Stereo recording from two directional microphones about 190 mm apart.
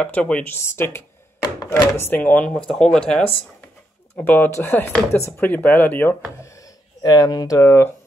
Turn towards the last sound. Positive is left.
turn(degrees=15)  # may be behind; listen again after turning